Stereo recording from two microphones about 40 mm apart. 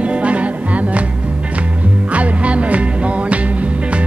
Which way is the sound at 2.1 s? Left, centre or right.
Right.